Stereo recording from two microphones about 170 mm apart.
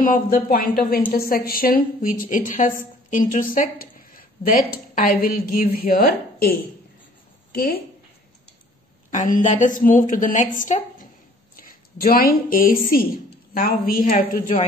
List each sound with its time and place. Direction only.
0.0 s a woman's voice: 55° left (ahead or behind)
9.1 s a woman's voice: 45° left (ahead or behind)